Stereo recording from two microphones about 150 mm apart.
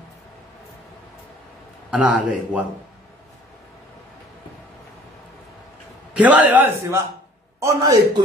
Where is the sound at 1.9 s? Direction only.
10° right (ahead or behind).